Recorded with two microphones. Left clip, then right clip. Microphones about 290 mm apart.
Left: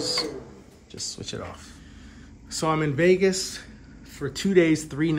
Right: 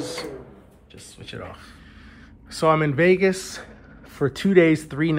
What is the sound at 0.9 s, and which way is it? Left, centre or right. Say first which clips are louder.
Speech: left 4 dB; centre.